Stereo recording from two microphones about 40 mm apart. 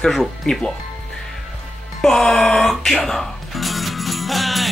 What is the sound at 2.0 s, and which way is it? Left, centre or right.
Speech, centre.